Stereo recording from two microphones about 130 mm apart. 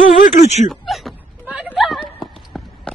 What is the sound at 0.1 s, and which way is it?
Speech, 60° left (ahead or behind).